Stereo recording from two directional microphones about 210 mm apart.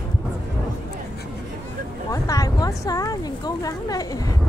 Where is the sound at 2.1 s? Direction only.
15° left (ahead or behind).